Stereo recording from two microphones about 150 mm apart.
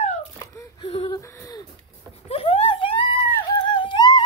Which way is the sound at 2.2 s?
40° left (ahead or behind).